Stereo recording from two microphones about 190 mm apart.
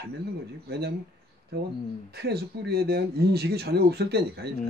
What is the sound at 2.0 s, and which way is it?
Speech, 60° right (ahead or behind).